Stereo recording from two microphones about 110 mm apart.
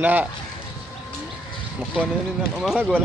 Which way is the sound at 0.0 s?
15° right (ahead or behind).